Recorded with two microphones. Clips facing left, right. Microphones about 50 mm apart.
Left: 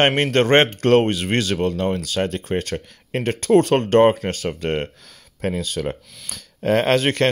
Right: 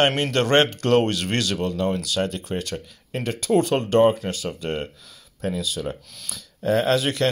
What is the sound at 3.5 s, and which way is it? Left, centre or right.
Speech, left.